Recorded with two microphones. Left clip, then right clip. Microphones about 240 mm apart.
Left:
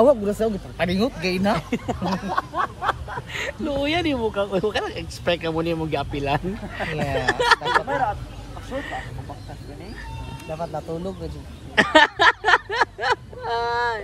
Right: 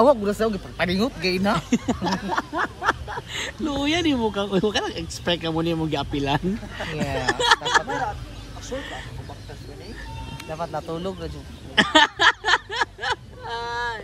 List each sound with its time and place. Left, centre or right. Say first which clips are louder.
0.0 s speech: left 1 dB; centre
1.7 s a sound: right 1 dB; right
3.3 s speech: left 2 dB; centre
7.0 s speech: left 1 dB; centre
8.7 s speech: left 3 dB; centre
10.5 s a man's voice: even; centre